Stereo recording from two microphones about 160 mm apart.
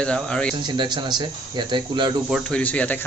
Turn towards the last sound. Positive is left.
turn(degrees=10)  # may be behind; listen again after turning